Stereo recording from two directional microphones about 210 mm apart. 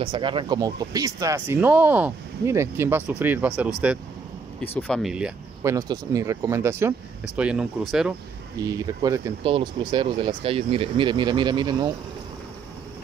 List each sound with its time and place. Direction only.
0.0 s speech: 20° right (ahead or behind); by 5.3 s centre (ahead or behind)
5.6 s speech: 15° right (ahead or behind)
8.6 s speech: 15° right (ahead or behind)